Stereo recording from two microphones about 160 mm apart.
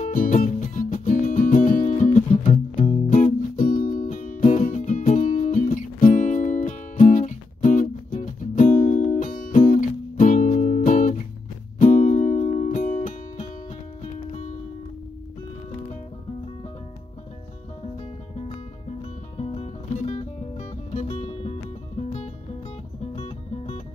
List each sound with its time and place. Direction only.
0.0 s music: 55° left (ahead or behind)
19.3 s music: 35° left (ahead or behind)
23.1 s music: 40° left (ahead or behind)